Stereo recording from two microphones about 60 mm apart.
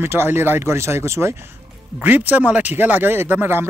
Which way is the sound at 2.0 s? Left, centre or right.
Right.